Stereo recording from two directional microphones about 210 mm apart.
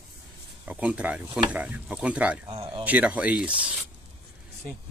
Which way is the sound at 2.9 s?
5° right (ahead or behind).